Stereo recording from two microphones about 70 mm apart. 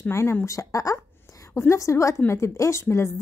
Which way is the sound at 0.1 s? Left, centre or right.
Left.